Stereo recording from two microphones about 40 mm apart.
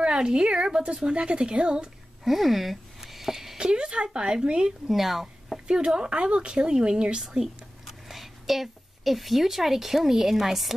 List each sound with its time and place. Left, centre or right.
0.0 s speech: right
2.2 s a sound: centre
3.5 s speech: right
4.8 s speech: centre
6.0 s speech: right
7.2 s a woman's voice: centre